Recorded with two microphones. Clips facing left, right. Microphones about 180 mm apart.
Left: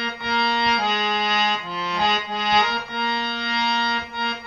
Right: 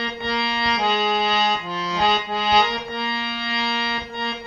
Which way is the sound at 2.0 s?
25° right (ahead or behind).